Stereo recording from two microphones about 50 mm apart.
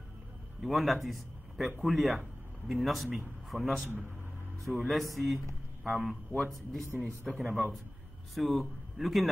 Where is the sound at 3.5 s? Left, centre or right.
Right.